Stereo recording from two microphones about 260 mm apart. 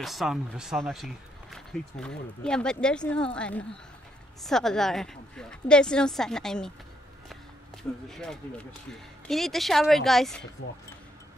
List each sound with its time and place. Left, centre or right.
0.0 s speech: centre
8.1 s speech: centre